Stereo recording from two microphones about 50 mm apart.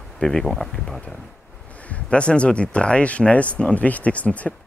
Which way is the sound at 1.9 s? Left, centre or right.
Left.